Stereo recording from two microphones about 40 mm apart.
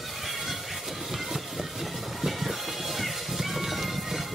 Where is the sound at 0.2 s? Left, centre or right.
Centre.